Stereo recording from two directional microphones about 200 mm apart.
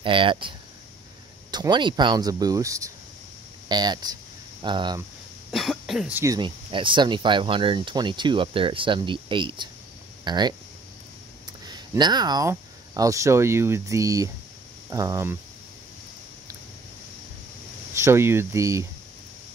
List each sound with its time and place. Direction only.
0.0 s speech: 25° right (ahead or behind)
5.5 s speech: centre (ahead or behind); by 10.5 s 20° right (ahead or behind)
11.6 s speech: 20° right (ahead or behind)
17.9 s speech: 15° right (ahead or behind)